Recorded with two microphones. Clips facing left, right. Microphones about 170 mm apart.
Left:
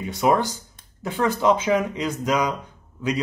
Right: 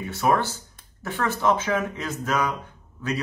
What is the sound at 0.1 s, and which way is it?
Speech, 15° left (ahead or behind).